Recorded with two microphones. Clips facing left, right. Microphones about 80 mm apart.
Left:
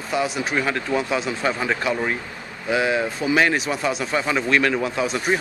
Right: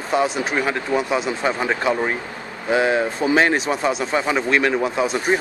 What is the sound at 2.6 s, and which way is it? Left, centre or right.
Speech, right.